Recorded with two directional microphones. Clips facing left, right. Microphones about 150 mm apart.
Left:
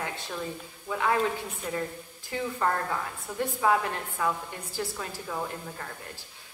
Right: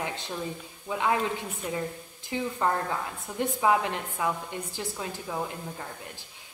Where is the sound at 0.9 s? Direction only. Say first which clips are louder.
Right 1 dB; 20° right (ahead or behind).